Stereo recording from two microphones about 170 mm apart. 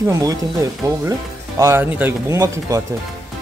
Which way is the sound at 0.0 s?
20° right (ahead or behind).